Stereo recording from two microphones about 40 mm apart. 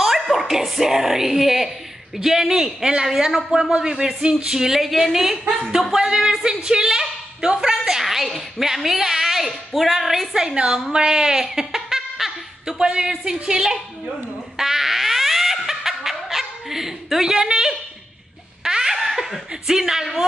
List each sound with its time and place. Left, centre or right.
0.0 s a woman's voice: centre
5.9 s a woman's voice: centre
10.4 s a woman's voice: centre
12.6 s a woman's voice: right
14.6 s a sound: centre
18.6 s laughter: centre